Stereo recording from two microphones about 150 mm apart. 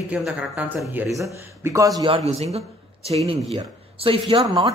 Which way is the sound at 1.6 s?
20° right (ahead or behind).